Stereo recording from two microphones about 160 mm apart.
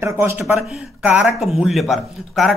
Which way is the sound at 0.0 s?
15° right (ahead or behind).